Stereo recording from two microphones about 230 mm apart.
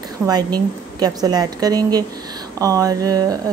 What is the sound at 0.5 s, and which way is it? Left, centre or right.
Speech, centre.